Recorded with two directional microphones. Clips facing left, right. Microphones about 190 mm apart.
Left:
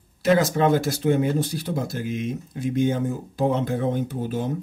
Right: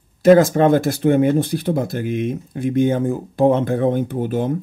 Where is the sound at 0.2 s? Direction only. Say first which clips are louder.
Right 8 dB; 50° right (ahead or behind).